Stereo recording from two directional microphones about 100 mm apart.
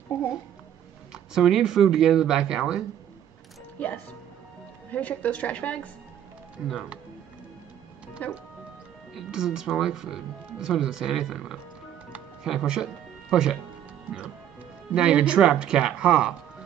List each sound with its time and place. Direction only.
1.1 s speech: 5° right (ahead or behind)
3.8 s a woman's voice: 15° left (ahead or behind)
6.7 s speech: 10° right (ahead or behind)
8.2 s a woman's voice: 15° left (ahead or behind)
9.1 s speech: 5° right (ahead or behind)
14.9 s speech: 10° right (ahead or behind)